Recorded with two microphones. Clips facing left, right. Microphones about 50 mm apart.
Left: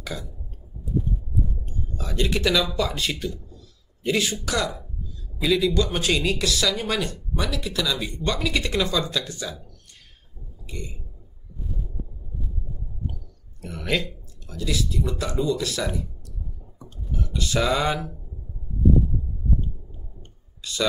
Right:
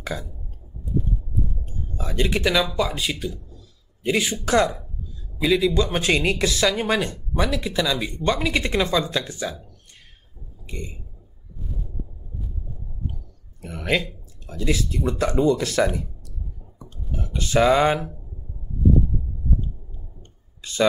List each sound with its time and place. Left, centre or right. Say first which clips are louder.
0.0 s burping: right 3 dB; right
1.9 s speech: right 2 dB; right
2.9 s a sound: right 1 dB; centre
4.1 s speech: right 4 dB; right
10.7 s speech: right 2 dB; right
13.6 s speech: right 2 dB; right
17.2 s speech: right 5 dB; right
20.6 s a sound: left 2 dB; right